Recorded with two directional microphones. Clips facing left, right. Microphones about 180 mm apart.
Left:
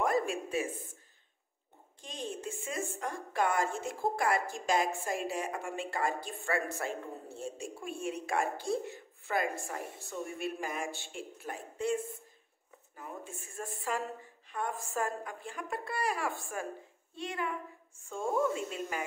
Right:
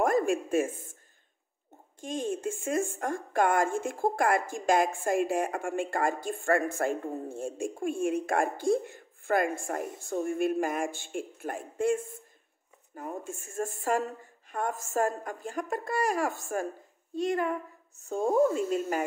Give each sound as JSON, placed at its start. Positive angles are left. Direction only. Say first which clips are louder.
{"t": 0.0, "sound": "speech", "louder": "right 5 dB", "side_deg": -50}
{"t": 2.0, "sound": "a woman's voice", "louder": "right 8 dB", "side_deg": -50}